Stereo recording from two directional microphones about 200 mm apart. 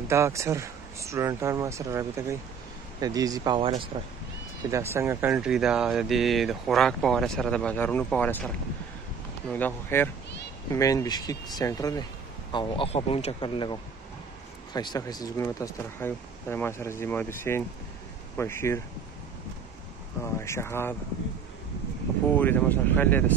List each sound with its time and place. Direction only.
0.1 s speech: 15° right (ahead or behind)
4.6 s speech: 15° right (ahead or behind); by 8.5 s 10° left (ahead or behind)
9.5 s speech: 10° left (ahead or behind)
12.5 s speech: 25° left (ahead or behind)
20.3 s speech: 15° left (ahead or behind)
22.4 s speech: 10° left (ahead or behind)